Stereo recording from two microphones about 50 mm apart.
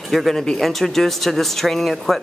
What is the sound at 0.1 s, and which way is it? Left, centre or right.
Speech, centre.